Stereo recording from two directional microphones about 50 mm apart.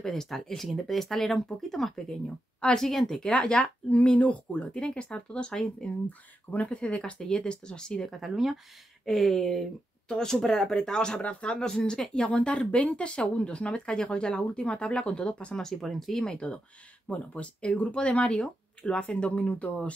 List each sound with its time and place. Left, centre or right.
0.0 s speech: centre
6.0 s speech: left
8.2 s speech: centre
15.8 s speech: centre
16.3 s speech: left